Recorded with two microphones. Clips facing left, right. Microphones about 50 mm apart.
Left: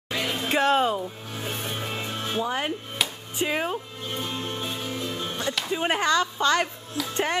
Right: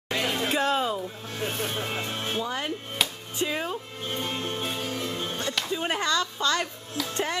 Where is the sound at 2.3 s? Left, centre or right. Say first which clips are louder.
Left 5 dB; left.